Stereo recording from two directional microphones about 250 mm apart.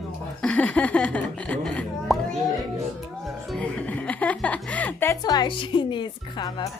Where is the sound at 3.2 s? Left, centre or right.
Centre.